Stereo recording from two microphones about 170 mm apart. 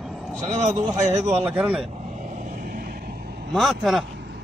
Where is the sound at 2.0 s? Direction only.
45° right (ahead or behind); by 3.4 s 65° right (ahead or behind).